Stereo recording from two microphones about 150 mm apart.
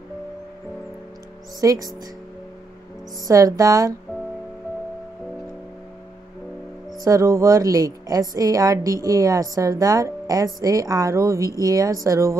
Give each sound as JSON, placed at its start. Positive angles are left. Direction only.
{"t": 1.6, "sound": "a woman's voice", "side_deg": -25}
{"t": 3.3, "sound": "a woman's voice", "side_deg": -20}
{"t": 7.1, "sound": "a woman's voice", "side_deg": -20}